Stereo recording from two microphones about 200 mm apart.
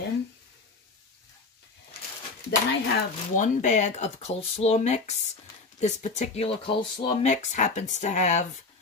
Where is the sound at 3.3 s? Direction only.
40° left (ahead or behind).